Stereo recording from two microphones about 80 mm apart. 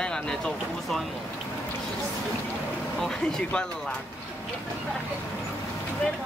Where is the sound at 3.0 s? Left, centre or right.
Centre.